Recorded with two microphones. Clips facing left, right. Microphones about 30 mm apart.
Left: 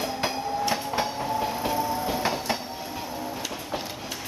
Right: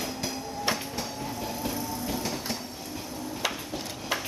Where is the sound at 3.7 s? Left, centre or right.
Centre.